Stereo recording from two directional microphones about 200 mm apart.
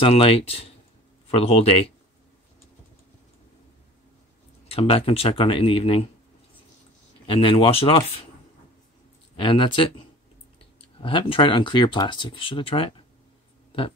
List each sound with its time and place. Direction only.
0.0 s speech: 30° left (ahead or behind)
4.6 s speech: 30° left (ahead or behind)
7.2 s speech: 25° left (ahead or behind)
9.4 s speech: 25° left (ahead or behind)
13.7 s a sound: 25° left (ahead or behind)